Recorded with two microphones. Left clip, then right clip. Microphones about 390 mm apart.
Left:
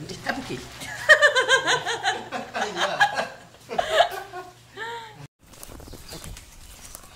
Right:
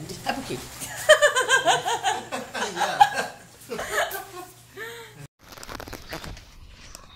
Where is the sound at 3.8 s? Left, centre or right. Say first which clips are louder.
Left 6 dB; centre.